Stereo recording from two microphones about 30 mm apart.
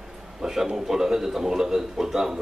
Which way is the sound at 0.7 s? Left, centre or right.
Centre.